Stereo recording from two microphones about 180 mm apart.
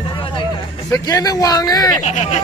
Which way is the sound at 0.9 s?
20° left (ahead or behind).